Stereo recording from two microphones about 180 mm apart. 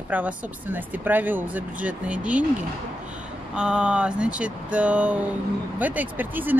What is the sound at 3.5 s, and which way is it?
Speech, 5° right (ahead or behind).